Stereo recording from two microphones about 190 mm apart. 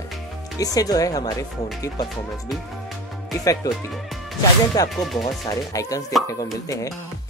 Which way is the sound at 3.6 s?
20° left (ahead or behind).